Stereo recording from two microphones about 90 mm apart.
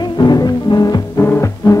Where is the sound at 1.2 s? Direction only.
35° left (ahead or behind).